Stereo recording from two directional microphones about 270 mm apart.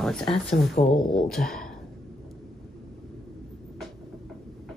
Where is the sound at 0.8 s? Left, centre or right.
Centre.